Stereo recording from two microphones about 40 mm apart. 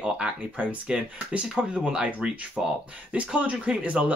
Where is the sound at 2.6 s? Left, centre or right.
Centre.